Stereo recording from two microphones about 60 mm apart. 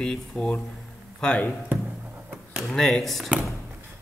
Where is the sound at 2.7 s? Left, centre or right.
Centre.